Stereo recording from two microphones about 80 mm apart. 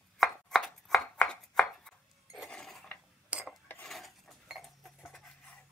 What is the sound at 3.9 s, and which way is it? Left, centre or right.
Cutlery, centre.